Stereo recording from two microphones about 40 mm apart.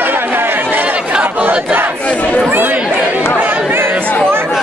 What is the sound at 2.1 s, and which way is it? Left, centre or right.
Chatter, left.